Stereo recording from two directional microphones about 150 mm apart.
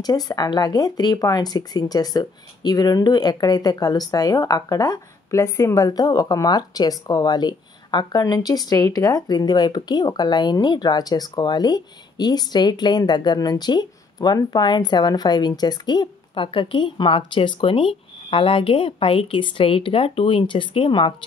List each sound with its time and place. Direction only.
0.0 s speech: 25° left (ahead or behind)